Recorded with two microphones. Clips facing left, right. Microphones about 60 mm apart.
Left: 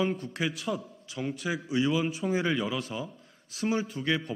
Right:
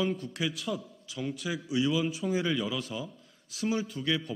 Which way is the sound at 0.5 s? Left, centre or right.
Left.